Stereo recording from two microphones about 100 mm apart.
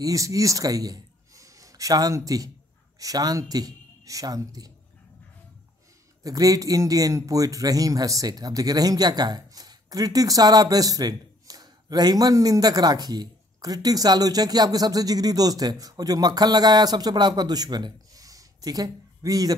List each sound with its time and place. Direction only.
0.0 s speech: 35° right (ahead or behind)
6.2 s speech: 35° right (ahead or behind)